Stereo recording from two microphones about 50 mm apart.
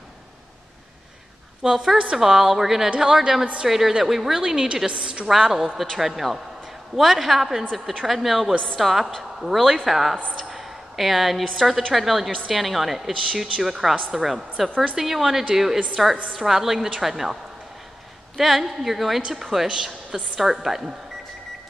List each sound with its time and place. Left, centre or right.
1.6 s a woman's voice: centre
18.4 s a woman's voice: centre